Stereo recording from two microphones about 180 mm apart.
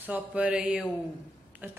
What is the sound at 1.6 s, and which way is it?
Speech, 10° right (ahead or behind).